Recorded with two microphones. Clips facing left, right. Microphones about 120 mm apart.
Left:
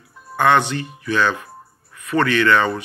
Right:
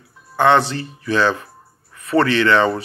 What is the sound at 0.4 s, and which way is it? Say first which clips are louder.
Speech: right 2 dB; 30° right (ahead or behind).